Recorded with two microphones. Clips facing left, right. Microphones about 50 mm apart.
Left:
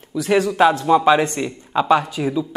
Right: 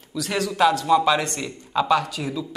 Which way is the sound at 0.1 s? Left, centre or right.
Left.